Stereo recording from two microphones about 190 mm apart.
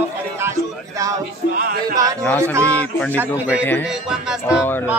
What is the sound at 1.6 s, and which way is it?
Speech, 50° right (ahead or behind).